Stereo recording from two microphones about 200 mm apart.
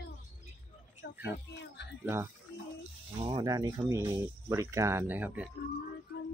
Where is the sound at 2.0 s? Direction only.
10° right (ahead or behind).